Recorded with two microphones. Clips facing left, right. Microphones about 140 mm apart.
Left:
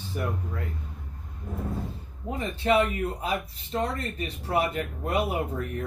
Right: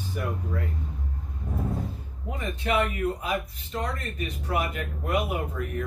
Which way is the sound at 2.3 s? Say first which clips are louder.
Left 3 dB; 30° left (ahead or behind).